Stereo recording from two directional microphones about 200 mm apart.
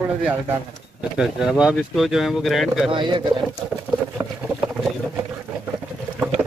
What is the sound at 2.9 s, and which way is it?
Speech, 25° right (ahead or behind).